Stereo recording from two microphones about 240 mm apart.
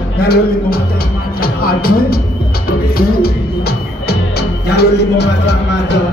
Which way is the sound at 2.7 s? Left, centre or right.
Left.